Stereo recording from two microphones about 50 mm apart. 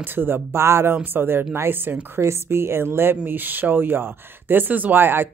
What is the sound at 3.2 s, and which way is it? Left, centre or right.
Speech, right.